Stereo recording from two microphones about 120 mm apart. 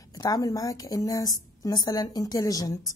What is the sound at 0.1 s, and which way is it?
A woman's voice, 35° left (ahead or behind).